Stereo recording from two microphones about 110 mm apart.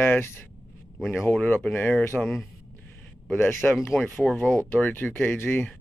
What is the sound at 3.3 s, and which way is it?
Speech, 20° left (ahead or behind).